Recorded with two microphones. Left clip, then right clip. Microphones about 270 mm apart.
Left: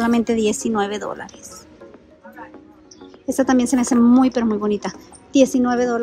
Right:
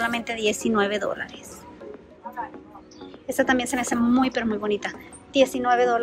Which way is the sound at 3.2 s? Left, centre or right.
Centre.